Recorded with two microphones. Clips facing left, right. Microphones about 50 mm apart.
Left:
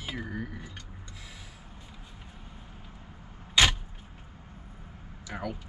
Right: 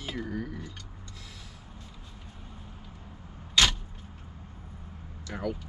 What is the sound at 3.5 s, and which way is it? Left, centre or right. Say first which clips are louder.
Vehicle: left 1 dB; centre.